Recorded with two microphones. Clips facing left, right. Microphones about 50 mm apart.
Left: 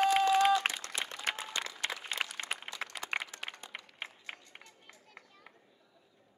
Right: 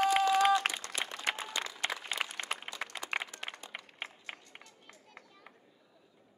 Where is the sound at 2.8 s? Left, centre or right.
Centre.